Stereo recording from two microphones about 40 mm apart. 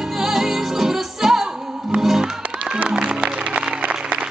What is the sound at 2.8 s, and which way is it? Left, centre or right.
Music, right.